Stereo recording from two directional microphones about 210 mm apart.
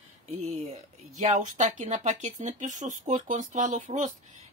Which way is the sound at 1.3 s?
35° right (ahead or behind).